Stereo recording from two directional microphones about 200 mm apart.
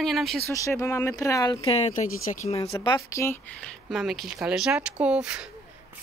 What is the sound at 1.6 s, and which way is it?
Speech, 30° left (ahead or behind).